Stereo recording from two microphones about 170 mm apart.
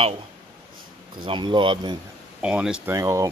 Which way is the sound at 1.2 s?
30° right (ahead or behind).